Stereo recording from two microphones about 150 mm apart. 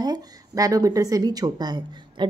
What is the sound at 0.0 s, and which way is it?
Speech, 25° right (ahead or behind).